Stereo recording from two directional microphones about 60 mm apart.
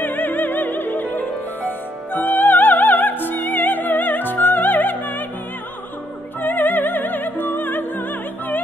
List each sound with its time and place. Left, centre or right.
0.0 s music: left
6.4 s music: left